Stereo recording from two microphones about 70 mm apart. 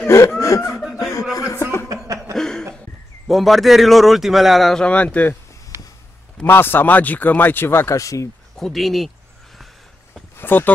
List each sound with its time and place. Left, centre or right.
0.0 s chuckle: left
1.3 s a sound: left
2.3 s cough: centre
3.3 s a man's voice: centre
4.8 s speech: left
6.4 s speech: left
7.9 s speech: left
8.5 s a man's voice: centre
10.3 s a sound: left